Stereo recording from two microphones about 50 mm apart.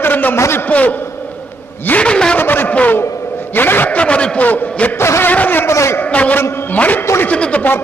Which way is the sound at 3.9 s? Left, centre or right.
Left.